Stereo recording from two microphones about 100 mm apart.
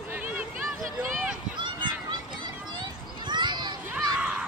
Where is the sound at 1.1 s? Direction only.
Centre (ahead or behind).